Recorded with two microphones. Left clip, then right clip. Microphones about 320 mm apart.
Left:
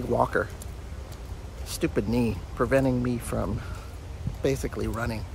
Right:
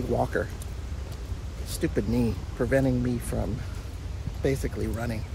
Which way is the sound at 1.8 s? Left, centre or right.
Centre.